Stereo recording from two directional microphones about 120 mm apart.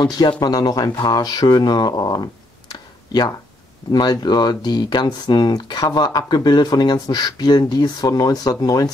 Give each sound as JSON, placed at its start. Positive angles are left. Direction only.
{"t": 0.0, "sound": "speech", "side_deg": 35}
{"t": 2.7, "sound": "a sound", "side_deg": 35}
{"t": 3.9, "sound": "speech", "side_deg": 35}